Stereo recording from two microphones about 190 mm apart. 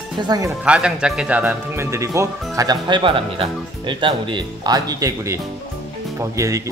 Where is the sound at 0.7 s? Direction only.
5° right (ahead or behind).